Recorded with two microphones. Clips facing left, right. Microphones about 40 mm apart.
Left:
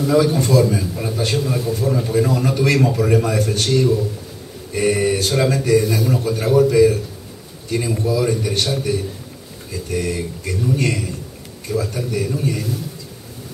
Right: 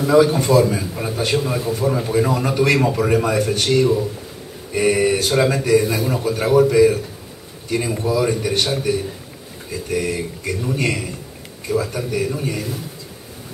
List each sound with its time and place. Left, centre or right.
0.0 s a man's voice: centre